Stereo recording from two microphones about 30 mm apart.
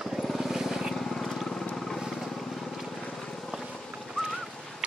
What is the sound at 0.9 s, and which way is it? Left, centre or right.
Vehicle, centre.